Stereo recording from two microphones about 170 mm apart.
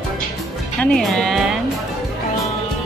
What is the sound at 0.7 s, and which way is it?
Music, centre (ahead or behind).